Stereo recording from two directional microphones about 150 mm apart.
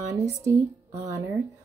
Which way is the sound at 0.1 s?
20° right (ahead or behind).